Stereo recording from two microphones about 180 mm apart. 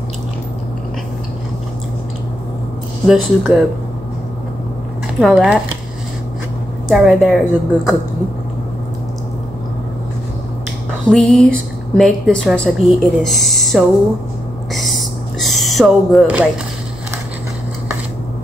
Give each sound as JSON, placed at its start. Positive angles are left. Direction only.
{"t": 3.1, "sound": "a woman's voice", "side_deg": 0}
{"t": 5.2, "sound": "a woman's voice", "side_deg": 0}
{"t": 6.9, "sound": "a woman's voice", "side_deg": 0}
{"t": 11.1, "sound": "a woman's voice", "side_deg": 5}
{"t": 14.7, "sound": "a sound", "side_deg": 0}